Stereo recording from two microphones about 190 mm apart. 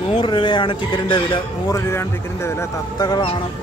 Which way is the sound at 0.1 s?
25° left (ahead or behind).